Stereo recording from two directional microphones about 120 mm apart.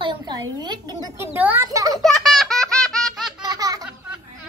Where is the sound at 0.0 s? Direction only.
40° right (ahead or behind).